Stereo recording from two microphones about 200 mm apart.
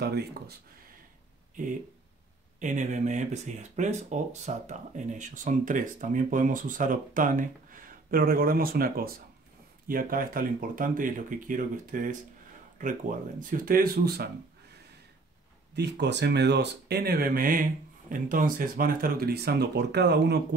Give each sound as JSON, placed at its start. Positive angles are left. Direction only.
{"t": 0.0, "sound": "speech", "side_deg": -55}
{"t": 1.6, "sound": "speech", "side_deg": -40}
{"t": 15.7, "sound": "speech", "side_deg": -60}